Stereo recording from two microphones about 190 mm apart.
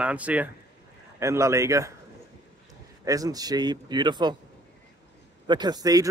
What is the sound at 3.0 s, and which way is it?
Speech, 20° right (ahead or behind).